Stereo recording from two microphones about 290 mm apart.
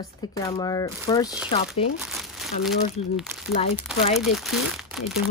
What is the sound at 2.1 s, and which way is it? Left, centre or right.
Crumpling, centre.